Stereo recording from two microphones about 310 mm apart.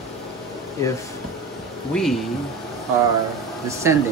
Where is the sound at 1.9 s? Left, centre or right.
Centre.